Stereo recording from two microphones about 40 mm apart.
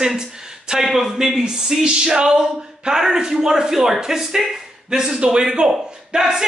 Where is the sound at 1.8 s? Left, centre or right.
Centre.